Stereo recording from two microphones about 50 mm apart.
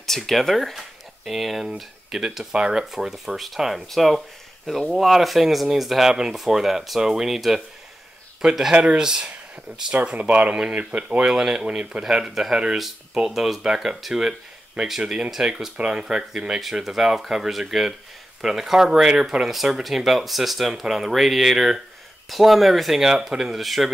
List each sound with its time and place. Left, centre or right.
0.0 s speech: centre
10.0 s speech: right; by 23.9 s centre